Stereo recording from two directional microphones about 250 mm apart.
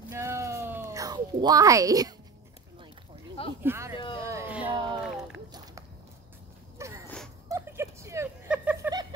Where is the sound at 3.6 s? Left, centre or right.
Centre.